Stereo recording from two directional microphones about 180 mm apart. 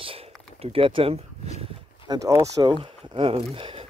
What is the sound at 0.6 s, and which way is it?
Speech, 30° right (ahead or behind).